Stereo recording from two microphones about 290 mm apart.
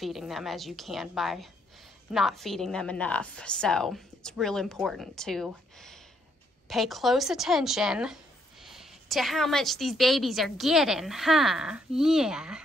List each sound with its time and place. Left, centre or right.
0.0 s a woman's voice: centre